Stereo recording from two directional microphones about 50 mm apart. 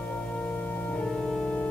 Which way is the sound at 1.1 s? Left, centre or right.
Centre.